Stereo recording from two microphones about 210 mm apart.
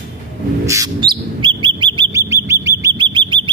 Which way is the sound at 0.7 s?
15° right (ahead or behind).